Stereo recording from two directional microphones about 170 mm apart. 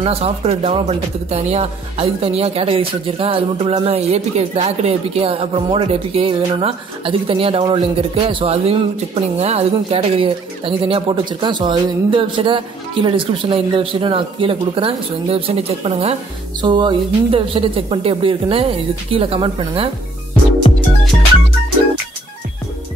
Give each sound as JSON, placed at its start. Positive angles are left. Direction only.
{"t": 0.0, "sound": "speech", "side_deg": -35}
{"t": 20.7, "sound": "music", "side_deg": 30}